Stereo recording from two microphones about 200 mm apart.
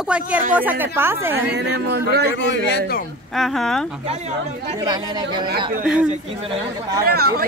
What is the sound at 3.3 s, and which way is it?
Speech, centre (ahead or behind).